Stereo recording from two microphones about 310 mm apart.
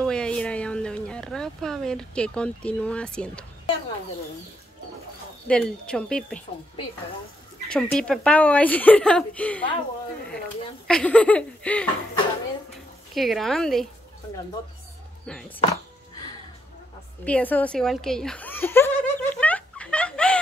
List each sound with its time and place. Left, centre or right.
0.0 s a sound: centre
5.5 s a woman's voice: centre
7.7 s a woman's voice: centre
10.9 s a woman's voice: centre
13.1 s a woman's voice: centre
15.2 s music: centre
17.2 s giggle: centre